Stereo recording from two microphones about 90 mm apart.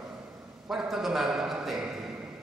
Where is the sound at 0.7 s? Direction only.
5° right (ahead or behind).